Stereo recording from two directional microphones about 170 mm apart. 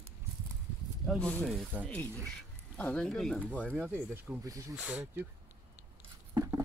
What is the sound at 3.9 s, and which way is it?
Speech, 10° right (ahead or behind).